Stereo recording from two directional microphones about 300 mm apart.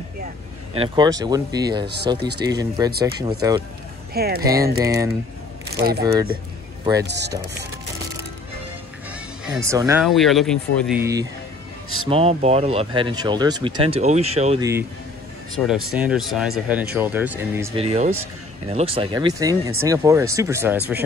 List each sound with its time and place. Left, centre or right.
0.7 s speech: centre
4.1 s speech: right
4.4 s speech: centre
5.8 s speech: right
6.8 s speech: centre
7.1 s speech: right
9.5 s speech: centre
12.1 s speech: right
15.5 s speech: centre
17.7 s speech: right